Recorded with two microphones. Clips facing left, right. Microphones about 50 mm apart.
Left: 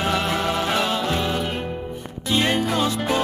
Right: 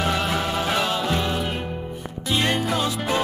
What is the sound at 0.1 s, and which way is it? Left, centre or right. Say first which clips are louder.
Music: left 1 dB; centre.